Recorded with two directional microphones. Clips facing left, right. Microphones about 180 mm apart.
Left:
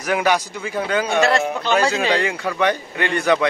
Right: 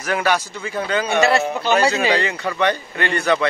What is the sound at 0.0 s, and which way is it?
Speech, 15° left (ahead or behind).